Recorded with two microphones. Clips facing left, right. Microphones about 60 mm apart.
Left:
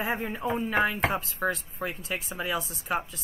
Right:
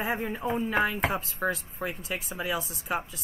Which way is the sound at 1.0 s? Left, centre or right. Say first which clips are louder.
Left 1 dB; centre.